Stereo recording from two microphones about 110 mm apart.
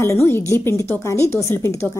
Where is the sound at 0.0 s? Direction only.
25° left (ahead or behind).